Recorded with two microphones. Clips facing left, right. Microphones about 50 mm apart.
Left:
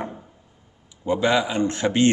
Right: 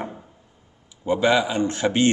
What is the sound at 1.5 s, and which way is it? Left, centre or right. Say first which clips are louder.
Speech: even; left.